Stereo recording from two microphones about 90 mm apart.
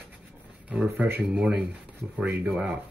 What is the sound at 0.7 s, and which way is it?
Speech, 20° right (ahead or behind).